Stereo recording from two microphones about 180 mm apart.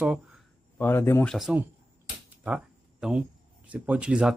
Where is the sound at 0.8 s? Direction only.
15° left (ahead or behind).